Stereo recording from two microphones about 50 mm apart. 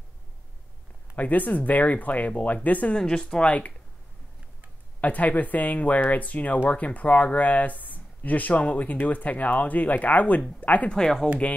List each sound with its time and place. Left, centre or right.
1.1 s speech: left
3.0 s speech: centre
5.0 s speech: left
10.9 s speech: centre